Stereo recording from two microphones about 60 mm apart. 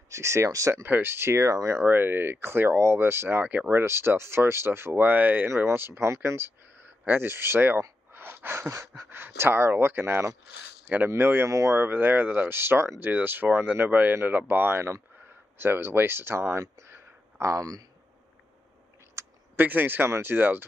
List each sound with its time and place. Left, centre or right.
0.1 s speech: right
0.8 s speech: right
1.9 s speech: right
3.7 s speech: right
5.7 s speech: right
8.1 s a sound: right
9.1 s speech: right
16.8 s a sound: right
19.1 s a sound: right
20.1 s speech: right